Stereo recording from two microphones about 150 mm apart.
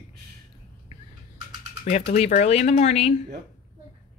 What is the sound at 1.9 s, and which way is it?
Speech, 45° left (ahead or behind).